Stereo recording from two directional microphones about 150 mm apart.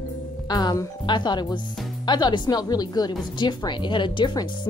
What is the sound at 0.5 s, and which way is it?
Speech, 25° left (ahead or behind).